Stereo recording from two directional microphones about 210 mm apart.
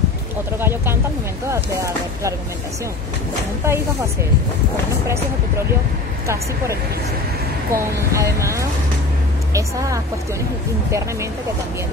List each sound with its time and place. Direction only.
0.6 s speech: 10° right (ahead or behind)
3.6 s speech: 15° right (ahead or behind)
6.2 s speech: 15° right (ahead or behind)